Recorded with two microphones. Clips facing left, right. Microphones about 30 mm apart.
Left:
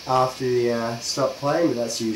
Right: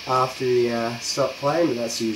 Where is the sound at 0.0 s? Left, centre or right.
Centre.